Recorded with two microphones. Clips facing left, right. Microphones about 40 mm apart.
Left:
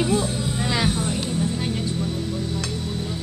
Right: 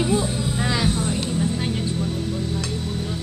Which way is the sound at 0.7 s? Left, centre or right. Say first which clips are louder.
Even; centre.